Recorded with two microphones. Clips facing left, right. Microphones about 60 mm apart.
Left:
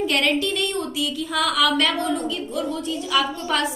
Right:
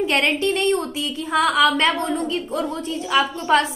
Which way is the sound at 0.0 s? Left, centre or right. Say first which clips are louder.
Right 2 dB; right.